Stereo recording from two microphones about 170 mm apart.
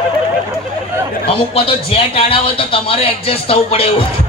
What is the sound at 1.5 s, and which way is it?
A man's voice, 30° left (ahead or behind).